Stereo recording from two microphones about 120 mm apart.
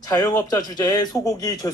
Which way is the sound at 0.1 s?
35° left (ahead or behind).